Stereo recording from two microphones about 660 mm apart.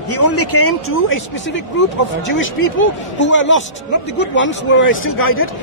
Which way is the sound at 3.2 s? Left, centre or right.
Centre.